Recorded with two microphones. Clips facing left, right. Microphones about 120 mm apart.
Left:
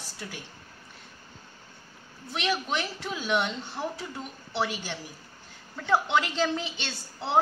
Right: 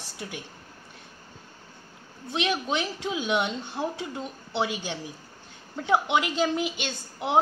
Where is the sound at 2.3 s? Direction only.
20° right (ahead or behind).